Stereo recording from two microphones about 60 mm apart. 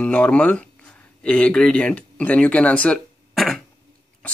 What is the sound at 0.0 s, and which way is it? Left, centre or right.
Speech, centre.